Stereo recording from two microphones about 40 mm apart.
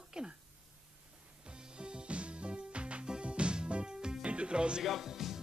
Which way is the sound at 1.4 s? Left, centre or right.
Right.